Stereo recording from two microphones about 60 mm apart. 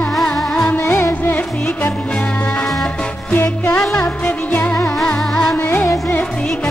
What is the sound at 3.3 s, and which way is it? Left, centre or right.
Music, left.